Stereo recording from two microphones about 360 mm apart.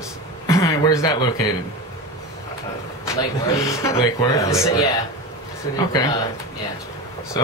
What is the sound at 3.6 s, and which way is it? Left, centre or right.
Speech, centre.